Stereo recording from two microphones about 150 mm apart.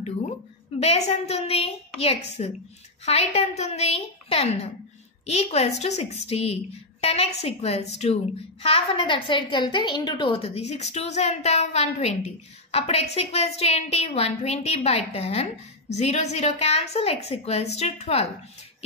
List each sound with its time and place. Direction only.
0.7 s a woman's voice: 45° left (ahead or behind)